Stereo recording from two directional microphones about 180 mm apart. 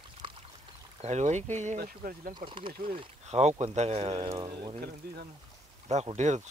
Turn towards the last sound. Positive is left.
turn(degrees=-40)  # may be behind; listen again after turning